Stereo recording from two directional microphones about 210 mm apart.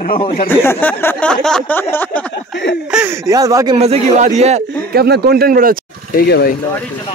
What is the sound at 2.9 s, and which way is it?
Speech, 10° right (ahead or behind).